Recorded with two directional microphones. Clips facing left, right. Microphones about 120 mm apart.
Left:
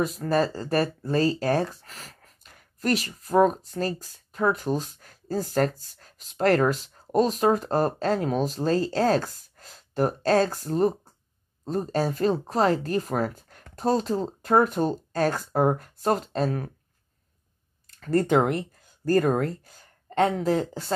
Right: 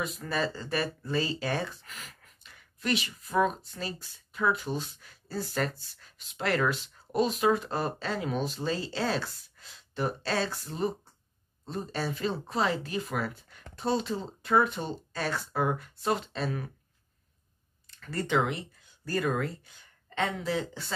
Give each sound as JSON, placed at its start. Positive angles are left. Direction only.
{"t": 0.2, "sound": "speech", "side_deg": 40}
{"t": 17.9, "sound": "speech", "side_deg": 40}